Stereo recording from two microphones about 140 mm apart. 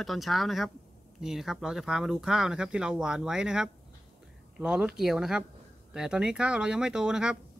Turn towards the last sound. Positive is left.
turn(degrees=-5)  # may be behind; listen again after turning